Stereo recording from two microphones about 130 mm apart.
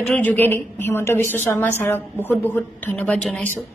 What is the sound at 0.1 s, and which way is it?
A woman's voice, 15° left (ahead or behind).